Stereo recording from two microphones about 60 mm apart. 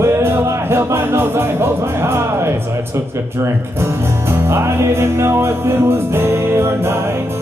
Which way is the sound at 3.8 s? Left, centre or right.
Right.